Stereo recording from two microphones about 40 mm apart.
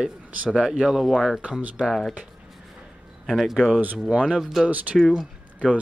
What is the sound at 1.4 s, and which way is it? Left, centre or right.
Speech, right.